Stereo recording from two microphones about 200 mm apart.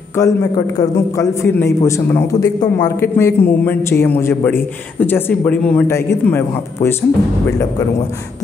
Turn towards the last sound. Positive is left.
turn(degrees=10)  # may be behind; listen again after turning